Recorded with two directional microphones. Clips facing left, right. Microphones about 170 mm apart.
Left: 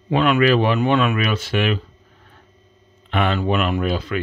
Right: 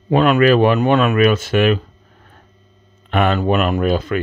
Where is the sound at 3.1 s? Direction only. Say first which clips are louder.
Right 4 dB; 45° right (ahead or behind).